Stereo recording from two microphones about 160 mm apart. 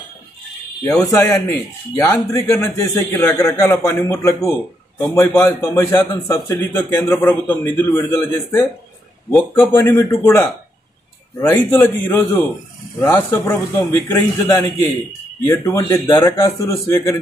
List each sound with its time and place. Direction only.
1.1 s a man's voice: 15° left (ahead or behind)